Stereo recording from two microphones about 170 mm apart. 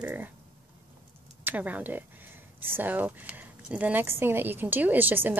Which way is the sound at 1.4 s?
10° right (ahead or behind).